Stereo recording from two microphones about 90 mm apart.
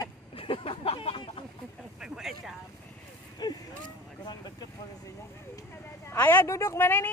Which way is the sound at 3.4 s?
50° left (ahead or behind).